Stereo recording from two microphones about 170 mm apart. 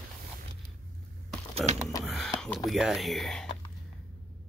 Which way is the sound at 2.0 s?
Centre (ahead or behind).